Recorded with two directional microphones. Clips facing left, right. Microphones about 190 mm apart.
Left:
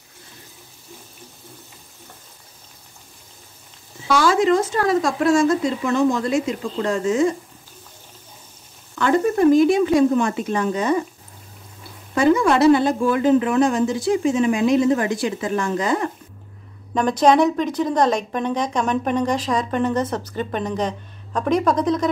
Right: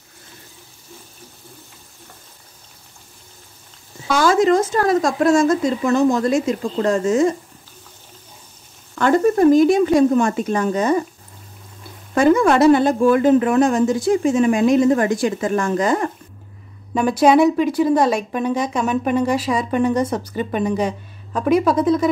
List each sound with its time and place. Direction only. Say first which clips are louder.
4.1 s a woman's voice: right 2 dB; 45° right (ahead or behind)
8.9 s a woman's voice: right 3 dB; 45° right (ahead or behind)
12.2 s a woman's voice: right 2 dB; 50° right (ahead or behind)
16.9 s speech: right 2 dB; 10° right (ahead or behind)